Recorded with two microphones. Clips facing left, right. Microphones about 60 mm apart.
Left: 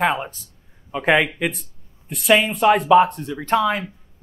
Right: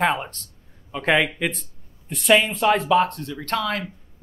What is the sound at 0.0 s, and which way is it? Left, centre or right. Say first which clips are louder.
A man's voice: left 1 dB; centre.